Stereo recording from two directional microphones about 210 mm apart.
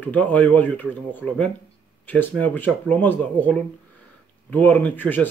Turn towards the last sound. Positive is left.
turn(degrees=10)  # may be behind; listen again after turning